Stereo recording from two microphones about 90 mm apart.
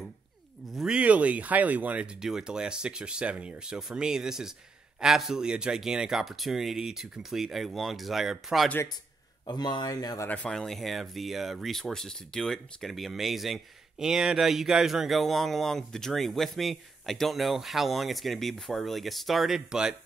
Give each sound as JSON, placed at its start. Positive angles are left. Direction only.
{"t": 0.7, "sound": "speech", "side_deg": -5}
{"t": 0.9, "sound": "speech", "side_deg": -15}
{"t": 2.2, "sound": "speech", "side_deg": -5}
{"t": 9.5, "sound": "speech", "side_deg": 50}
{"t": 10.2, "sound": "speech", "side_deg": 15}
{"t": 10.5, "sound": "speech", "side_deg": 5}